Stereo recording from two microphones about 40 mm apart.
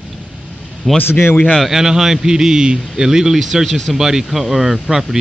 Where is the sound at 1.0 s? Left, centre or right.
Left.